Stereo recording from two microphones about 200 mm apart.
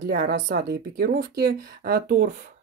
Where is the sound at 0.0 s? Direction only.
50° right (ahead or behind).